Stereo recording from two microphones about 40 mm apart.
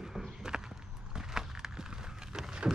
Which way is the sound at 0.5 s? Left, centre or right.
Centre.